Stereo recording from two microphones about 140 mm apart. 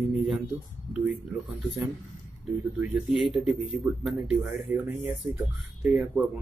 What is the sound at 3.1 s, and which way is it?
Speech, 5° right (ahead or behind).